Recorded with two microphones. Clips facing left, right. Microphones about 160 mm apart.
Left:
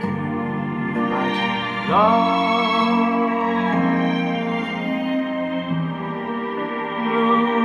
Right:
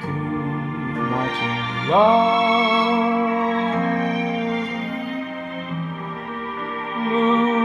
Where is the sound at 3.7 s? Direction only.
60° left (ahead or behind).